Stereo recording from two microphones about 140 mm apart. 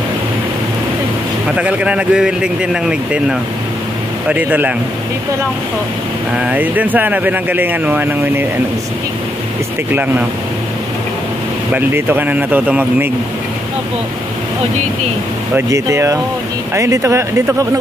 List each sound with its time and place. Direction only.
1.6 s speech: 10° right (ahead or behind)
6.3 s speech: 10° right (ahead or behind)
11.7 s speech: 15° right (ahead or behind)
15.5 s speech: 20° right (ahead or behind)